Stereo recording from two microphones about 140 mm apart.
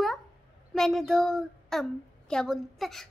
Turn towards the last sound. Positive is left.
turn(degrees=0)  # may be behind; listen again after turning